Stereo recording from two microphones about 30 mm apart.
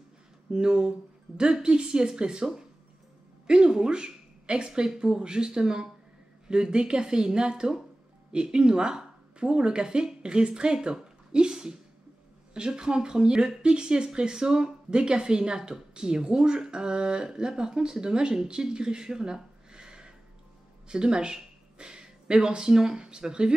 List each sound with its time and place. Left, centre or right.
0.5 s speech: right
3.4 s a woman's voice: right
11.5 s a sound: centre
12.5 s speech: right